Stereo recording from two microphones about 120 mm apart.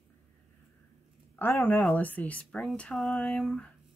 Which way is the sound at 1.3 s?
15° left (ahead or behind).